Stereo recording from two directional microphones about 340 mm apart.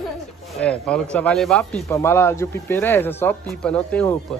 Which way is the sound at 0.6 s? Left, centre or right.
Centre.